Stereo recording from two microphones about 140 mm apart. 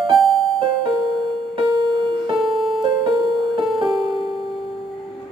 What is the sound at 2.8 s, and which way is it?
Music, 40° right (ahead or behind).